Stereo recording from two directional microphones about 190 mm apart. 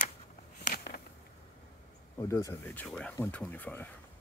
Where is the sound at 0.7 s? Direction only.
55° left (ahead or behind).